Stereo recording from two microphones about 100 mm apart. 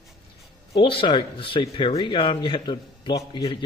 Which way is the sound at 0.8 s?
60° left (ahead or behind).